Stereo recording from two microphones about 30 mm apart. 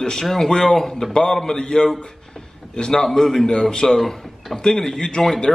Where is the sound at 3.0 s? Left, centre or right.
Centre.